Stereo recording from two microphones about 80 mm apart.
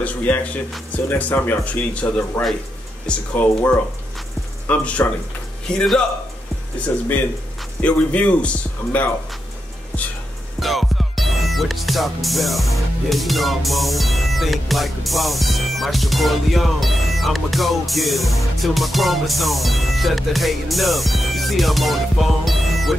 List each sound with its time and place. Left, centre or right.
0.0 s speech: centre
7.8 s speech: centre
10.6 s music: centre